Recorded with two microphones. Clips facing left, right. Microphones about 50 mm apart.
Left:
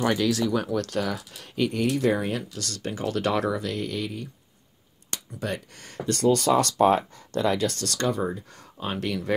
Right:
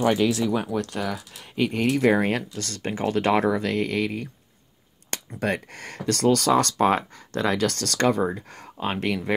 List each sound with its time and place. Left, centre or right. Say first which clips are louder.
0.0 s speech: right 2 dB; centre
1.7 s speech: right 4 dB; right
2.5 s speech: right 2 dB; right